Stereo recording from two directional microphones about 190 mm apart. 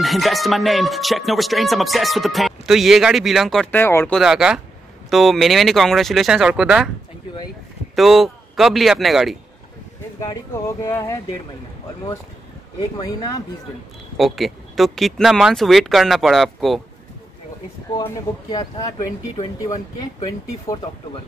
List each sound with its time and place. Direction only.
0.0 s speech: centre (ahead or behind)
4.2 s speech: 5° right (ahead or behind)
7.9 s speech: centre (ahead or behind)
10.2 s speech: 15° left (ahead or behind)
12.8 s speech: 20° left (ahead or behind)
14.1 s speech: centre (ahead or behind)
18.0 s speech: 20° left (ahead or behind)